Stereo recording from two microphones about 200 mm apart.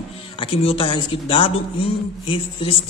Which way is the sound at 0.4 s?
30° left (ahead or behind).